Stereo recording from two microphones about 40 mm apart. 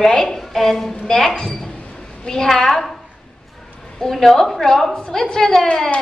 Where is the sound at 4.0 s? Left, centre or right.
Centre.